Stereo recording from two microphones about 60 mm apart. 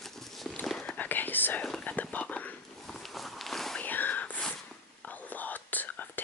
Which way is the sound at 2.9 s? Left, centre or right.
Centre.